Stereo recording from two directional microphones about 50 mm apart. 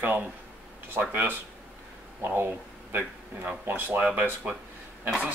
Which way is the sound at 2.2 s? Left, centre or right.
Right.